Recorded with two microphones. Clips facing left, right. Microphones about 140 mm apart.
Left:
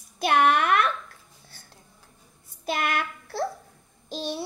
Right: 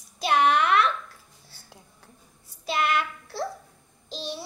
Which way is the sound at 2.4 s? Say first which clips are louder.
Right 2 dB; 50° left (ahead or behind).